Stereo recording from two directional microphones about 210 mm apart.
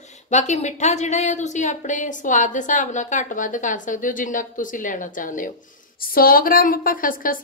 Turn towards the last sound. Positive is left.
turn(degrees=40)  # may be behind; listen again after turning